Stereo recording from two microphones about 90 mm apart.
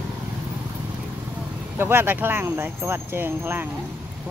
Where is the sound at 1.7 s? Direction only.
25° right (ahead or behind).